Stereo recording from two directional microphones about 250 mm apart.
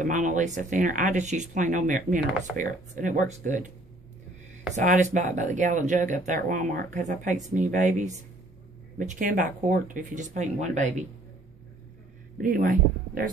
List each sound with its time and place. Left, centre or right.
0.0 s speech: right
4.7 s speech: right
12.4 s speech: right